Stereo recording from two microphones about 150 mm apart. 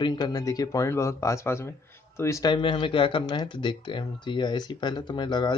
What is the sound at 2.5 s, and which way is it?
Speech, 35° left (ahead or behind).